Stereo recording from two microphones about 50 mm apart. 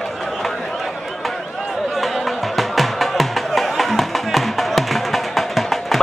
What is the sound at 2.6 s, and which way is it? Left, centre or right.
Music, centre.